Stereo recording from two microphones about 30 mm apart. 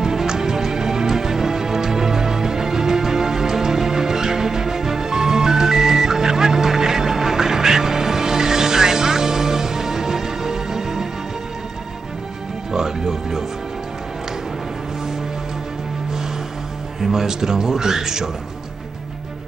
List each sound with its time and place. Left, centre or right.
0.0 s music: centre
12.7 s music: centre
17.0 s a man's voice: centre